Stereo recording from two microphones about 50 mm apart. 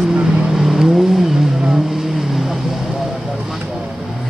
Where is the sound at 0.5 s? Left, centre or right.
Centre.